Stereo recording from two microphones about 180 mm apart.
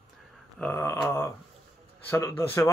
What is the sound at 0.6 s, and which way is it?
A man's voice, 15° left (ahead or behind).